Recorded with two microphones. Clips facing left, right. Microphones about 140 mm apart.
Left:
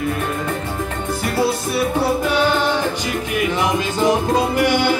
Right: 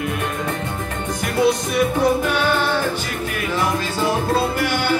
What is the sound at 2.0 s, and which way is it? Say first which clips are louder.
Music: even; 10° left (ahead or behind).